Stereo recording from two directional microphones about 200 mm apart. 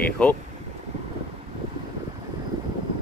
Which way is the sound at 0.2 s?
5° left (ahead or behind).